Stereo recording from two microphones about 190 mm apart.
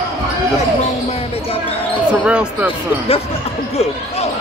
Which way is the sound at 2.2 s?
5° right (ahead or behind).